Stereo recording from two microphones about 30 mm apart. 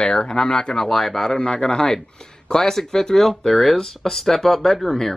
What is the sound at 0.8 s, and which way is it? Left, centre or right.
Speech, centre.